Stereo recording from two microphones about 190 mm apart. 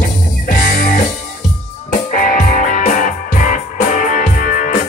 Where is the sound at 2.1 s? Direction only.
45° left (ahead or behind).